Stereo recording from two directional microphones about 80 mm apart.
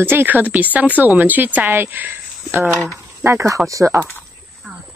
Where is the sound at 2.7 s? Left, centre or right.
Centre.